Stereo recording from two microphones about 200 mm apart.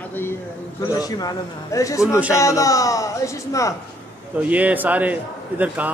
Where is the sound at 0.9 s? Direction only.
20° left (ahead or behind).